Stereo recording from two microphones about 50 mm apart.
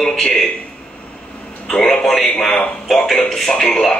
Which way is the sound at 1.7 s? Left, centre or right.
Centre.